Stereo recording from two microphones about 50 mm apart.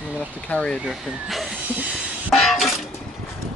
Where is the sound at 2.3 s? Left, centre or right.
Centre.